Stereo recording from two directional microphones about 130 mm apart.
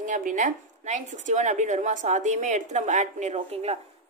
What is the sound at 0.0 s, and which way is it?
A woman's voice, 75° right (ahead or behind).